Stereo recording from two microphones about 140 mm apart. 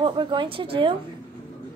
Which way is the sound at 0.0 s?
35° right (ahead or behind).